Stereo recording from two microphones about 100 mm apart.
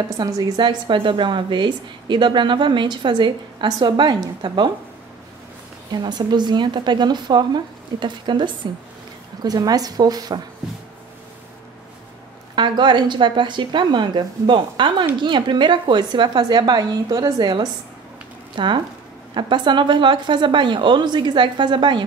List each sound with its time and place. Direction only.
0.2 s a woman's voice: 40° right (ahead or behind)
5.9 s a woman's voice: 45° right (ahead or behind)
12.5 s a woman's voice: 50° right (ahead or behind)